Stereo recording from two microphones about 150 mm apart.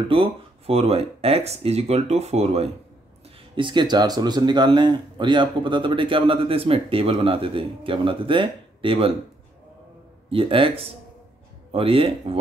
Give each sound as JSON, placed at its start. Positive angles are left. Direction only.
{"t": 0.1, "sound": "speech", "side_deg": -40}
{"t": 3.5, "sound": "speech", "side_deg": -30}
{"t": 10.3, "sound": "speech", "side_deg": -35}